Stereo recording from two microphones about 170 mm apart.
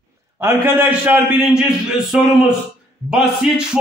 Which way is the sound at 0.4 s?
15° right (ahead or behind).